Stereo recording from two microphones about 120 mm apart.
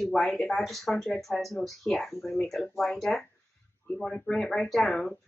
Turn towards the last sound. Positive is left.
turn(degrees=5)  # may be behind; listen again after turning